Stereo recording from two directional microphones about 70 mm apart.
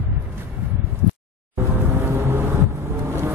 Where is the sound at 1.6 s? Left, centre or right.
Right.